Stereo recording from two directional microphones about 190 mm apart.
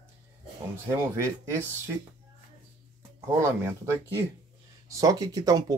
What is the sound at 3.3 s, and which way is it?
Speech, 15° right (ahead or behind).